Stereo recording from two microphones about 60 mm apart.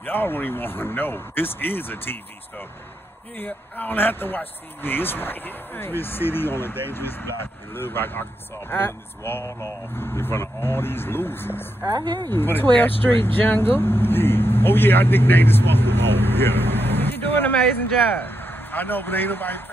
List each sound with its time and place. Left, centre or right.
0.0 s speech: left
3.3 s speech: left